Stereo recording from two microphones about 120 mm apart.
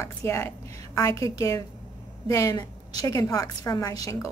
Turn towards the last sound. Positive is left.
turn(degrees=30)  # may be behind; listen again after turning